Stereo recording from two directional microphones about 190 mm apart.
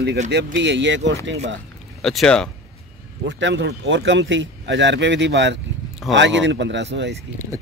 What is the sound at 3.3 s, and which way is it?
Speech, 75° right (ahead or behind).